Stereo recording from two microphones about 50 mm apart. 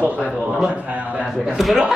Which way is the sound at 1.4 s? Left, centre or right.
Centre.